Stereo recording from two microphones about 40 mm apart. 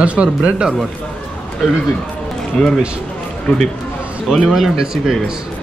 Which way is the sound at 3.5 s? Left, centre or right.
Left.